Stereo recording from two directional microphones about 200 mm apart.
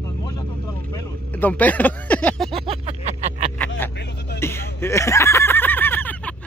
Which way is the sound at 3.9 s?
60° left (ahead or behind).